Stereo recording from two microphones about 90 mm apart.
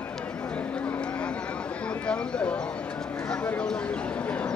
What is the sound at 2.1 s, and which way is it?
Speech, 10° left (ahead or behind).